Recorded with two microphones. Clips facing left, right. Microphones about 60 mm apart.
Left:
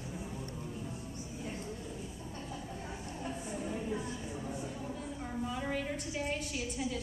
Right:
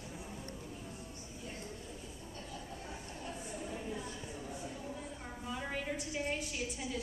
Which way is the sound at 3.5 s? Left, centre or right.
Left.